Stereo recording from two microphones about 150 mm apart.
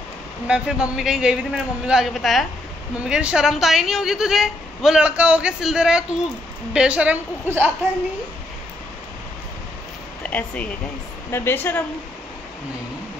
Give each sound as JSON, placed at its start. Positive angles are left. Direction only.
{"t": 0.5, "sound": "a woman's voice", "side_deg": -5}
{"t": 10.2, "sound": "speech", "side_deg": 10}